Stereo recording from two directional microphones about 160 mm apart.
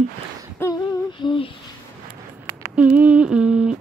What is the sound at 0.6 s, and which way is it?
Humming, 25° left (ahead or behind).